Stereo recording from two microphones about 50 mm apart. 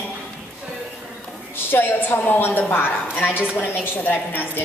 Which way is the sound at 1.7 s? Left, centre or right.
Left.